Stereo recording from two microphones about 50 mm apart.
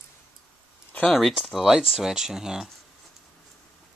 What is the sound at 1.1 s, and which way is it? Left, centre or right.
Speech, centre.